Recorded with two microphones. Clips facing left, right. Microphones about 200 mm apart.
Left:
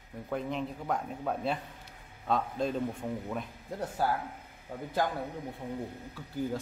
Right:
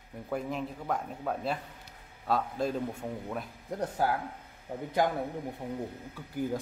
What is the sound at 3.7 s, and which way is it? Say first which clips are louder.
Speech: right 2 dB; 15° right (ahead or behind).